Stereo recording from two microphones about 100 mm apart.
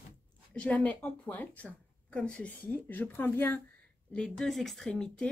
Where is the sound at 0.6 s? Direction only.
15° left (ahead or behind).